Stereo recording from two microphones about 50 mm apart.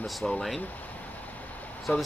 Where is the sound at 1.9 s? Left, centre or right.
Left.